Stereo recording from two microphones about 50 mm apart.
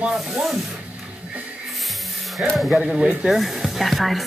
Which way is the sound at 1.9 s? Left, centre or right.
Centre.